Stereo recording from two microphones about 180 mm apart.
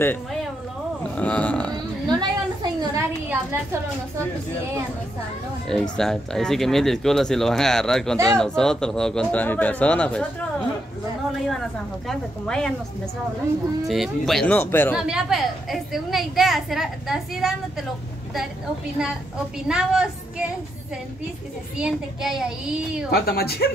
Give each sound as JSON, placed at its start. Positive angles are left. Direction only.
{"t": 1.1, "sound": "a sound", "side_deg": 5}
{"t": 2.0, "sound": "a sound", "side_deg": -20}
{"t": 5.7, "sound": "a woman's voice", "side_deg": 0}
{"t": 12.1, "sound": "a woman's voice", "side_deg": 5}
{"t": 13.8, "sound": "a woman's voice", "side_deg": 0}
{"t": 15.0, "sound": "a woman's voice", "side_deg": -5}
{"t": 19.7, "sound": "a woman's voice", "side_deg": -5}
{"t": 21.7, "sound": "a woman's voice", "side_deg": -5}
{"t": 23.1, "sound": "a woman's voice", "side_deg": 60}